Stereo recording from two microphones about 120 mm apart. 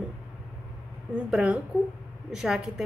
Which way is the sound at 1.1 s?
10° right (ahead or behind).